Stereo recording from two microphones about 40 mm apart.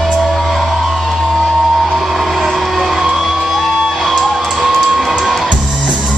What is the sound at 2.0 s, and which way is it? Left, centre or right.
Music, centre.